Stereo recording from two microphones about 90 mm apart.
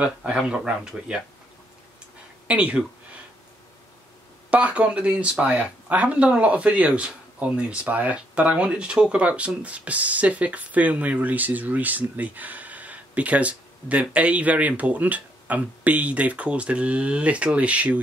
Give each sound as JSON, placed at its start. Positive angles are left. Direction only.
{"t": 0.0, "sound": "speech", "side_deg": -10}
{"t": 2.4, "sound": "speech", "side_deg": -15}
{"t": 4.5, "sound": "speech", "side_deg": -15}